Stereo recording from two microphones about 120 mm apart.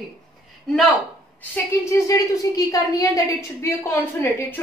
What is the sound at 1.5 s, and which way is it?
A woman's voice, 25° left (ahead or behind).